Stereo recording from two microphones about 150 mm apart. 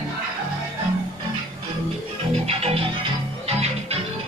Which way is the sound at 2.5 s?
40° right (ahead or behind).